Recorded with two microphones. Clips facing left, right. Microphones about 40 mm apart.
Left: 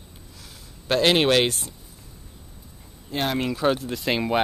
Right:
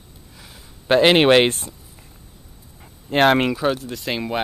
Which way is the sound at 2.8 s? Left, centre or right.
Right.